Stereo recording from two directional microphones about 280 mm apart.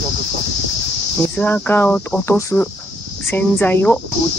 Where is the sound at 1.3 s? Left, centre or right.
Centre.